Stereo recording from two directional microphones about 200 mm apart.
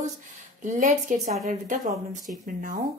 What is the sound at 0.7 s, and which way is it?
Speech, 40° right (ahead or behind).